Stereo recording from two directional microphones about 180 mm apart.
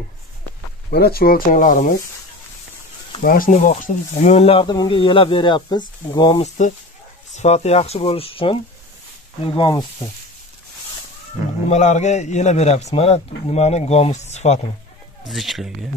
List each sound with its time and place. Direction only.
0.8 s speech: 60° left (ahead or behind)
3.2 s speech: 50° left (ahead or behind); by 6.4 s 25° left (ahead or behind)
7.3 s a man's voice: 35° left (ahead or behind)
11.7 s a man's voice: 40° left (ahead or behind)
15.2 s speech: centre (ahead or behind)